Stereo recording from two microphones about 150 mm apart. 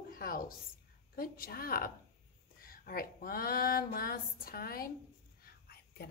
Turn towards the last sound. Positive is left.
turn(degrees=90)